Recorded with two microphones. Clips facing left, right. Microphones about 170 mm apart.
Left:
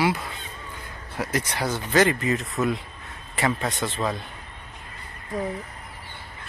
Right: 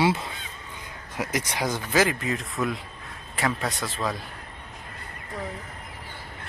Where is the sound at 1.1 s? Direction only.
15° right (ahead or behind).